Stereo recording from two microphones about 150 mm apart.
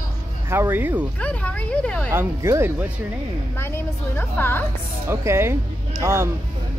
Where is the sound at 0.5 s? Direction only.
15° right (ahead or behind).